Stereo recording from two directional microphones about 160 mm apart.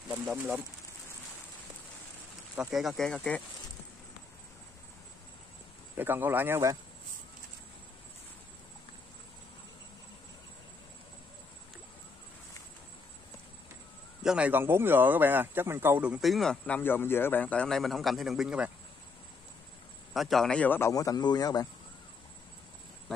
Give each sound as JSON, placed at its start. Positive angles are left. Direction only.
{"t": 0.1, "sound": "speech", "side_deg": -5}
{"t": 2.5, "sound": "speech", "side_deg": -5}
{"t": 5.9, "sound": "speech", "side_deg": -10}
{"t": 14.2, "sound": "speech", "side_deg": -5}
{"t": 20.2, "sound": "speech", "side_deg": 0}
{"t": 20.9, "sound": "speech", "side_deg": 20}